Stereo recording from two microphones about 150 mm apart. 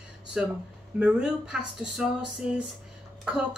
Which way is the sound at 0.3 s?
5° right (ahead or behind).